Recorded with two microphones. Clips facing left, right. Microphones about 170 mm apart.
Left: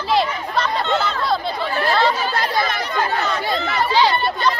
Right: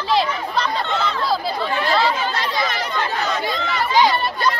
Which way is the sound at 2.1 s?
50° left (ahead or behind).